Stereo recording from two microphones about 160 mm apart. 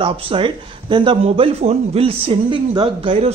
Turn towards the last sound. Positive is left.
turn(degrees=-35)  # may be behind; listen again after turning